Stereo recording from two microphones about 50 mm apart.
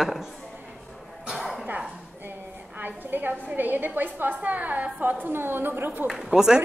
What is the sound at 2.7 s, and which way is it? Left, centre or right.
A woman's voice, right.